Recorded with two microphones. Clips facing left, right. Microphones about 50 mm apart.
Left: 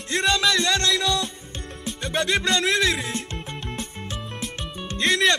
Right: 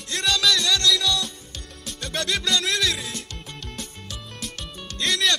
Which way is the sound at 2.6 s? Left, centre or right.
Left.